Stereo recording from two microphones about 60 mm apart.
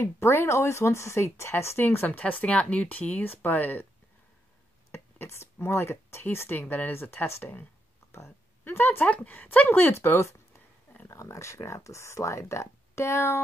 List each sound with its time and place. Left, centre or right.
0.0 s speech: left
2.1 s speech: left
4.9 s speech: left
8.1 s a sound: left
9.0 s speech: left